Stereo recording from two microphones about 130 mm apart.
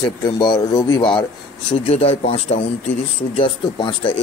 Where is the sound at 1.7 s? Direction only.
50° left (ahead or behind).